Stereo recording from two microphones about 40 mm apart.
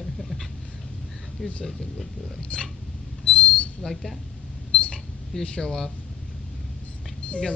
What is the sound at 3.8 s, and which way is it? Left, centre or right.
Speech, centre.